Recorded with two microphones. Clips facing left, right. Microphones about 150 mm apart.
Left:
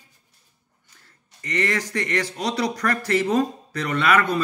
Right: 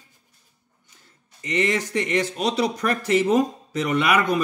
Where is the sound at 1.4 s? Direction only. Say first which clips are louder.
Right 2 dB; 20° right (ahead or behind).